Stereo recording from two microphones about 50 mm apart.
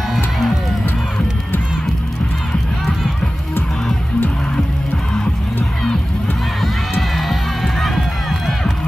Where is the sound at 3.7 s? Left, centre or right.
Centre.